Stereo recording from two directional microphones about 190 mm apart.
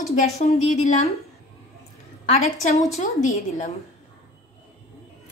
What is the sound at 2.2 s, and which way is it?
A woman's voice, 35° left (ahead or behind).